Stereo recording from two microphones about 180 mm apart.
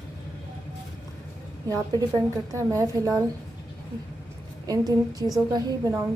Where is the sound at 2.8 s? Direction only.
15° right (ahead or behind).